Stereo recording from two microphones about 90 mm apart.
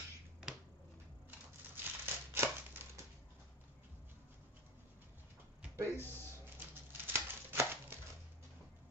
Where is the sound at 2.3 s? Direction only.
25° right (ahead or behind).